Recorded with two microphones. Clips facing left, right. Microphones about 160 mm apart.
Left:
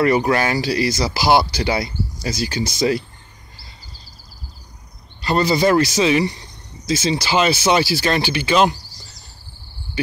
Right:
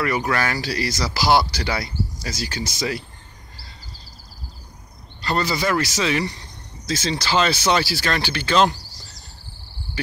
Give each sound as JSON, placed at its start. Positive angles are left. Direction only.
{"t": 0.0, "sound": "speech", "side_deg": 25}
{"t": 5.2, "sound": "speech", "side_deg": 15}